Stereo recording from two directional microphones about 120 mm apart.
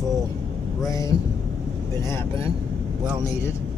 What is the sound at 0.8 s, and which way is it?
Speech, 30° left (ahead or behind).